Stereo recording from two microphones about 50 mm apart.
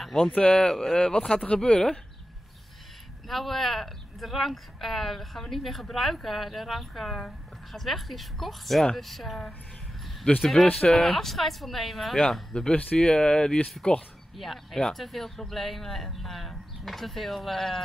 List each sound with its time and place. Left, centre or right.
0.0 s a sound: centre
0.4 s speech: centre
3.3 s speech: centre
10.4 s speech: centre
12.7 s speech: centre
14.3 s speech: centre